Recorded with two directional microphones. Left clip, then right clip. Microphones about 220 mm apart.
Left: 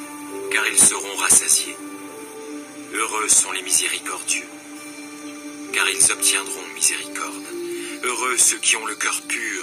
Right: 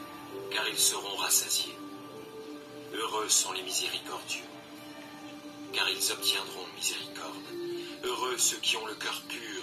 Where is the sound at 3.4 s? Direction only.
90° left.